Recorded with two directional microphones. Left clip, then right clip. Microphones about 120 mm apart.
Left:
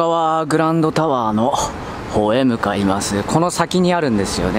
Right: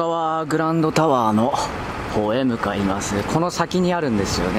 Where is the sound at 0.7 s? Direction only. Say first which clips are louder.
Left 1 dB; 5° left (ahead or behind).